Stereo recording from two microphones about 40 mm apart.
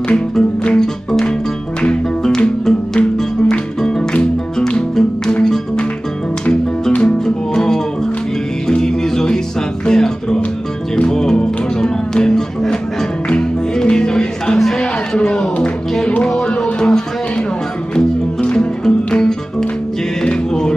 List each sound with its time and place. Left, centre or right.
0.1 s music: left
1.8 s music: centre
4.1 s music: left
7.1 s music: centre
14.8 s a sound: left
16.3 s music: centre